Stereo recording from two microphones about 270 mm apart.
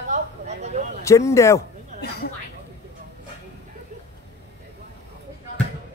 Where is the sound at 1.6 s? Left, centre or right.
Left.